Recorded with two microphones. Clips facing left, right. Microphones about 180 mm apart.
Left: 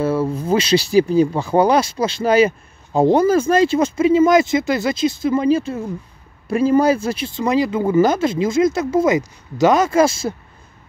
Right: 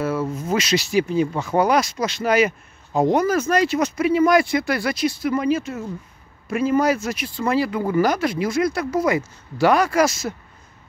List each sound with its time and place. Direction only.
0.0 s speech: 30° left (ahead or behind)